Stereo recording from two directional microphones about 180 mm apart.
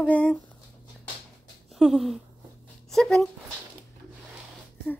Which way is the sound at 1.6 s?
Centre (ahead or behind).